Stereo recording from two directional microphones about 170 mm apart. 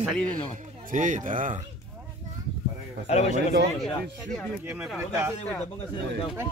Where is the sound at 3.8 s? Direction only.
5° left (ahead or behind).